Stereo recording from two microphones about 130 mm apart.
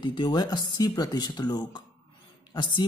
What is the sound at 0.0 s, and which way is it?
Speech, 35° left (ahead or behind).